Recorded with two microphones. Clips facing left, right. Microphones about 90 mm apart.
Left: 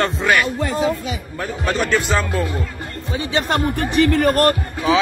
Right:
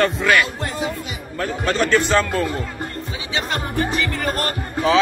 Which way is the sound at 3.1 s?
55° left (ahead or behind).